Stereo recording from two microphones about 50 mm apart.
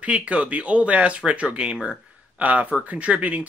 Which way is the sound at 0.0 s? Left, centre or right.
Right.